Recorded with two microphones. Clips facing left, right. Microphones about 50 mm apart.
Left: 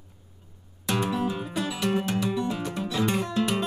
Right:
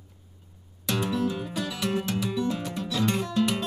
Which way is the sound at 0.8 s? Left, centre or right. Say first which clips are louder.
Left 1 dB; centre.